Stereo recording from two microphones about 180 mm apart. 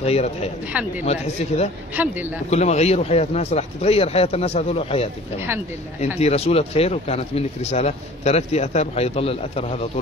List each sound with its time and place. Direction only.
0.0 s speech: 35° left (ahead or behind)
2.0 s speech: 10° right (ahead or behind)
2.5 s speech: 40° left (ahead or behind)
6.1 s speech: 35° left (ahead or behind)